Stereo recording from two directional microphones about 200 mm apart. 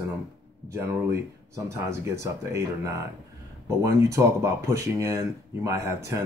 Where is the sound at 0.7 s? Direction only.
10° right (ahead or behind).